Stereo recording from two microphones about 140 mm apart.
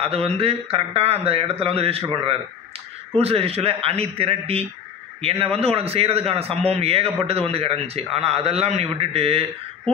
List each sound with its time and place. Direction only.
0.0 s a man's voice: 45° right (ahead or behind)